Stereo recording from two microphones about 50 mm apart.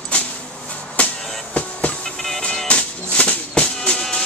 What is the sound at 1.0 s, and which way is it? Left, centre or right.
Music, left.